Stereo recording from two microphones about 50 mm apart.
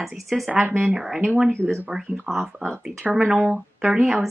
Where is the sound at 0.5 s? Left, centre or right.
Right.